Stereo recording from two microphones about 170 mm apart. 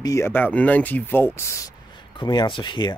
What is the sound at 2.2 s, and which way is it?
Speech, 25° left (ahead or behind).